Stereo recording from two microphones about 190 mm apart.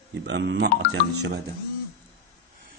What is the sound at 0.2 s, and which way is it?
Speech, 70° right (ahead or behind).